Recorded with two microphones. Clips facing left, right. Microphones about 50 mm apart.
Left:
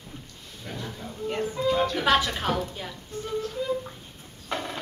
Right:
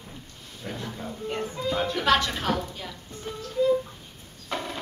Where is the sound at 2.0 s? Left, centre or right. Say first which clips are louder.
Even; centre.